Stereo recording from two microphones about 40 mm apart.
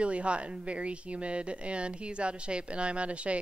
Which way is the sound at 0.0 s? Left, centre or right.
Right.